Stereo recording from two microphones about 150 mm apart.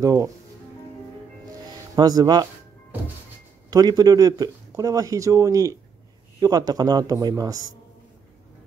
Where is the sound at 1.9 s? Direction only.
25° right (ahead or behind).